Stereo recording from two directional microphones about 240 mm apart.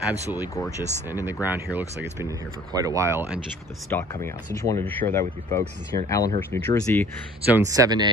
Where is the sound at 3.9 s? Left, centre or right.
Centre.